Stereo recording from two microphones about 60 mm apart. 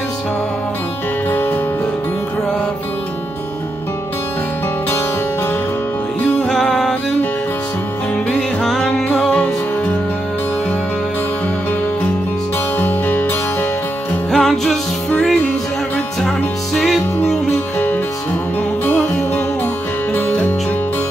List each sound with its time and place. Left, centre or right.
6.5 s music: centre
8.3 s music: centre
9.3 s music: centre
12.7 s music: left
14.3 s music: centre
16.2 s music: centre
20.2 s music: left